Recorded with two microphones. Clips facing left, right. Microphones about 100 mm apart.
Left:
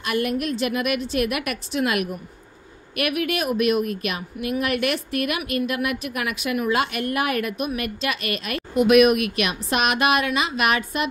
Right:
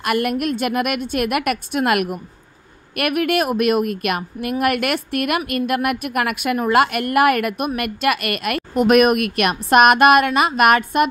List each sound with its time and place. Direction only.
0.0 s a woman's voice: 55° right (ahead or behind)